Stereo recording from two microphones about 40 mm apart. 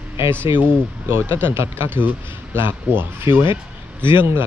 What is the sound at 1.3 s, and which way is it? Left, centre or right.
Speech, right.